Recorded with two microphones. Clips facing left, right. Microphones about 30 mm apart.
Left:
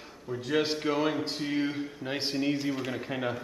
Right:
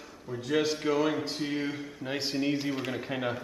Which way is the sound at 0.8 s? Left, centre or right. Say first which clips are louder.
Right 1 dB; centre.